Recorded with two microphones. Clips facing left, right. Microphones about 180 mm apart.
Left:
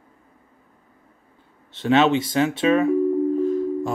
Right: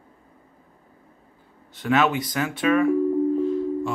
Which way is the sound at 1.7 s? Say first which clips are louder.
Left 4 dB; 25° left (ahead or behind).